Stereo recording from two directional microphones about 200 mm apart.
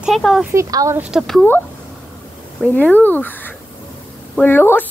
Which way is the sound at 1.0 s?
5° right (ahead or behind).